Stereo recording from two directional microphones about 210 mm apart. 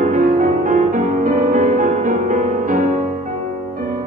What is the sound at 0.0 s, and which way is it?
Music, 40° right (ahead or behind).